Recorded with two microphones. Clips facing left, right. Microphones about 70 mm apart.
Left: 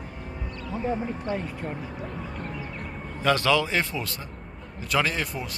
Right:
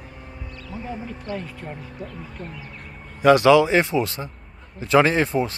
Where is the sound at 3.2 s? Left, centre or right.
Centre.